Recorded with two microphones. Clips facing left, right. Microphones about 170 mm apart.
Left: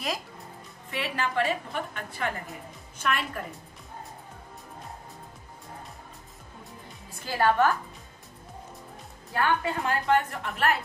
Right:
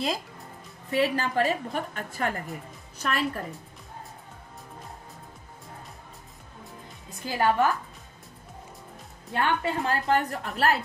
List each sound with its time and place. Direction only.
0.8 s a woman's voice: 40° right (ahead or behind)
7.2 s a woman's voice: 15° right (ahead or behind)
9.3 s a woman's voice: 30° right (ahead or behind)